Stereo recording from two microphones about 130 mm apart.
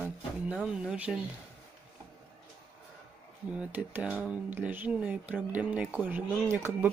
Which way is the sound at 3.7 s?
15° right (ahead or behind).